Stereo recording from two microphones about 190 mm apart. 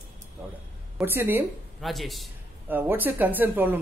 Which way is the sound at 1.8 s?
Centre (ahead or behind).